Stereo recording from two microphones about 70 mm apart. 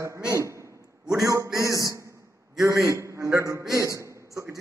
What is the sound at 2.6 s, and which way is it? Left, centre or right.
A man's voice, right.